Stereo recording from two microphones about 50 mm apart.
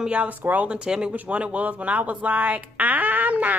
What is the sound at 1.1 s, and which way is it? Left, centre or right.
Speech, right.